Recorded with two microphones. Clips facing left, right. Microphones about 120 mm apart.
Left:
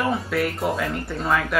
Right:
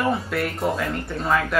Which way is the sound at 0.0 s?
Centre (ahead or behind).